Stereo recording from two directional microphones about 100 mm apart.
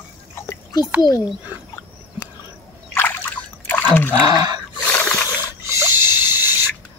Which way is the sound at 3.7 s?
15° left (ahead or behind).